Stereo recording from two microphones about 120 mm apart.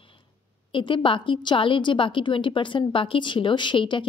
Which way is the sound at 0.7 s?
45° left (ahead or behind).